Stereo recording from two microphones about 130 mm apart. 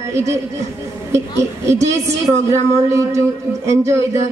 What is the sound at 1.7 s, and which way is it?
Speech, 20° right (ahead or behind).